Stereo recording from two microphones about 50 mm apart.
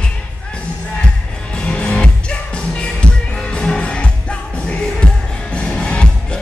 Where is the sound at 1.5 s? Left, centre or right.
Left.